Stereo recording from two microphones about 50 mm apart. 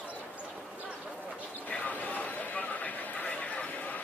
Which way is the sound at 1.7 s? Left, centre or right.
Left.